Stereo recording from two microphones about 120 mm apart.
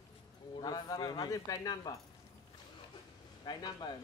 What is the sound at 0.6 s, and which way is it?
Speech, 35° left (ahead or behind).